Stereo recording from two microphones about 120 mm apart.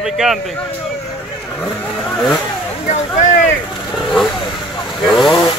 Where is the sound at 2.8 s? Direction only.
90° left.